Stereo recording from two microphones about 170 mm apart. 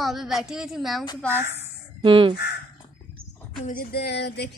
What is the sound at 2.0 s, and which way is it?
Speech, 30° right (ahead or behind).